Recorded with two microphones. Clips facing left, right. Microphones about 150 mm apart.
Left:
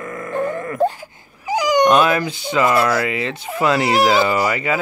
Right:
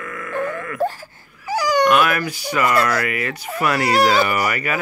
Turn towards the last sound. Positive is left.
turn(degrees=20)  # may be behind; listen again after turning